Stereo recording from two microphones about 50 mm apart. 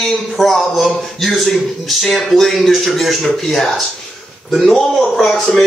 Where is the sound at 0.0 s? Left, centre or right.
Centre.